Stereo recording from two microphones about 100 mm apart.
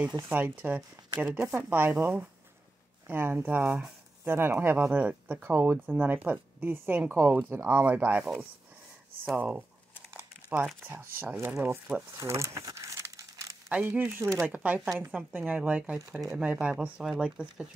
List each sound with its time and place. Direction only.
0.3 s speech: 20° right (ahead or behind)
9.3 s speech: 15° right (ahead or behind)
10.8 s speech: 20° right (ahead or behind)
12.2 s crumpling: 30° right (ahead or behind)
13.7 s speech: 15° right (ahead or behind)